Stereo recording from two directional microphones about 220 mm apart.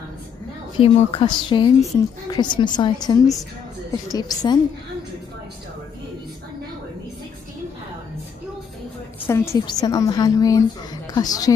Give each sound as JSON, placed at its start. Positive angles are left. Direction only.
{"t": 0.7, "sound": "a woman's voice", "side_deg": 25}
{"t": 9.3, "sound": "a woman's voice", "side_deg": 10}